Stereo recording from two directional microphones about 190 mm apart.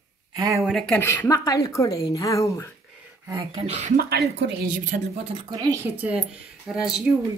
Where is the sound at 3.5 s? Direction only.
35° right (ahead or behind).